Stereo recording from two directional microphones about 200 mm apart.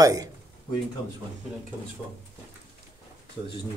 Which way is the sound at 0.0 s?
15° right (ahead or behind).